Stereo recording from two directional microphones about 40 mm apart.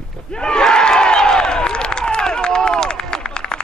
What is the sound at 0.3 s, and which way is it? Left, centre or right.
Crowd, left.